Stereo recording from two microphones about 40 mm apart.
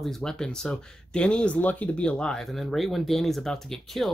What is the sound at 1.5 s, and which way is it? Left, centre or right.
Speech, left.